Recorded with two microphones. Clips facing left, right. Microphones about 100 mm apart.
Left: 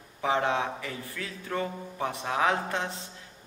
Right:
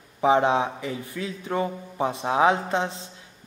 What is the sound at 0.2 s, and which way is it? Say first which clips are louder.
Speech: right 7 dB; 20° right (ahead or behind).